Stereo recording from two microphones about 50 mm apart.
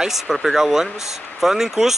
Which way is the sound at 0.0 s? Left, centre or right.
Centre.